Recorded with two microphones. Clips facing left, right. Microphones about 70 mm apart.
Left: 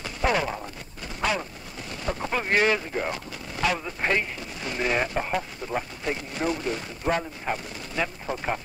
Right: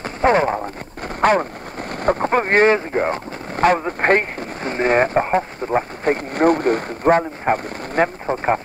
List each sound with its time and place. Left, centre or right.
0.0 s speech: right